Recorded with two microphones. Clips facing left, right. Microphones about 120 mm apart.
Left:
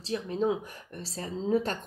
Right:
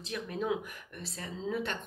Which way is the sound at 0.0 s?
30° left (ahead or behind).